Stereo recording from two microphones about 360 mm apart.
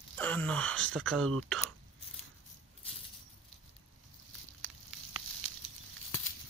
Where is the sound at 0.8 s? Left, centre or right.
Centre.